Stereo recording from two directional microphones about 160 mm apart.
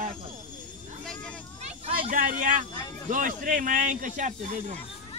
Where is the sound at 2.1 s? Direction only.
55° right (ahead or behind).